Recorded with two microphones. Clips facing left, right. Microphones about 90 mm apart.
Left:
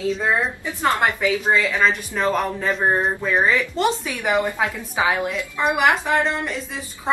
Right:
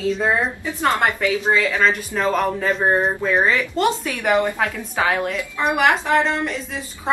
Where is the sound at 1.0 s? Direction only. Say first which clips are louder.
Right 1 dB; centre (ahead or behind).